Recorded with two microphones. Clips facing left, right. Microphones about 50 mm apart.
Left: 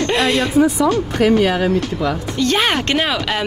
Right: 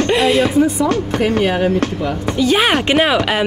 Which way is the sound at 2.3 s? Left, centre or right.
Centre.